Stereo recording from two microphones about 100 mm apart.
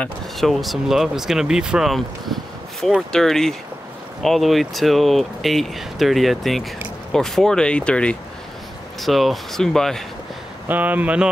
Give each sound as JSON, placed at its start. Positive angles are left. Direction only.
{"t": 0.4, "sound": "speech", "side_deg": 0}
{"t": 9.0, "sound": "speech", "side_deg": 0}
{"t": 10.7, "sound": "speech", "side_deg": -15}